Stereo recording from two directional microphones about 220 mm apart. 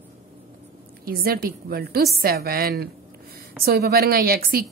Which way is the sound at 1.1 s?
40° right (ahead or behind).